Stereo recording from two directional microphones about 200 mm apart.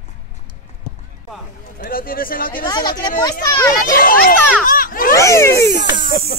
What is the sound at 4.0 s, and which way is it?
A child's voice, 45° left (ahead or behind).